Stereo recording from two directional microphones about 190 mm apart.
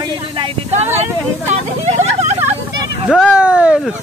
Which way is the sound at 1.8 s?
35° right (ahead or behind).